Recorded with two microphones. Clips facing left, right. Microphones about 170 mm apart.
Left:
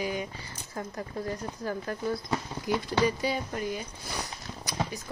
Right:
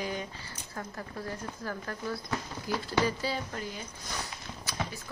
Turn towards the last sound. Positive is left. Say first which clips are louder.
# left 3 dB
turn(degrees=15)  # may be behind; listen again after turning